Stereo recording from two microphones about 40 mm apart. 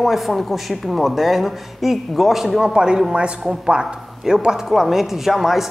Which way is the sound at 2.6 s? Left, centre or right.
Centre.